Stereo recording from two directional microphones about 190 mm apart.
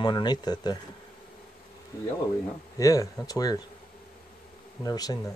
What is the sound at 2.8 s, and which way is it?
Speech, 20° left (ahead or behind).